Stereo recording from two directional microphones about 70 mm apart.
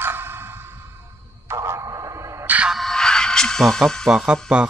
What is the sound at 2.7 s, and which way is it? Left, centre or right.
Music, centre.